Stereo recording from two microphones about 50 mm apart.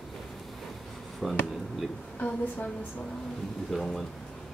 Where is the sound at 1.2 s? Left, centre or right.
Centre.